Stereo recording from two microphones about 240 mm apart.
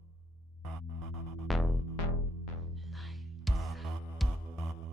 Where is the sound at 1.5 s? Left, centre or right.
Centre.